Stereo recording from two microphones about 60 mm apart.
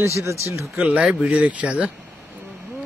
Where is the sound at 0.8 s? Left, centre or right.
Centre.